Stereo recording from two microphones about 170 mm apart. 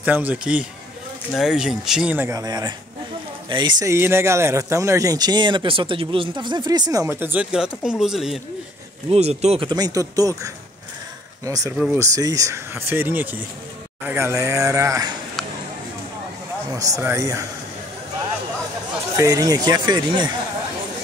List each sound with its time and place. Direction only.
0.0 s speech: 10° right (ahead or behind)
9.1 s speech: 40° right (ahead or behind); by 15.1 s 20° right (ahead or behind)
16.7 s speech: 20° right (ahead or behind)
19.1 s speech: 20° right (ahead or behind)